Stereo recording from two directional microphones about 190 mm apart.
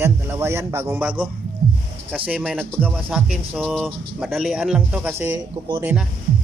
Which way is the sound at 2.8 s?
5° right (ahead or behind).